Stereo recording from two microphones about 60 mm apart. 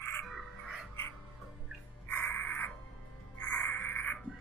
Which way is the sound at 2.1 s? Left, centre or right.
Left.